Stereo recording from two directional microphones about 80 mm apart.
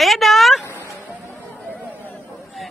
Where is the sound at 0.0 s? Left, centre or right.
Centre.